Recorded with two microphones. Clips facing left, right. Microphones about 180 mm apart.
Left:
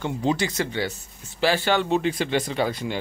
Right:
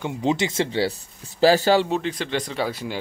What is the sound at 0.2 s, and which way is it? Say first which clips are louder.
Speech: right 3 dB; 20° right (ahead or behind).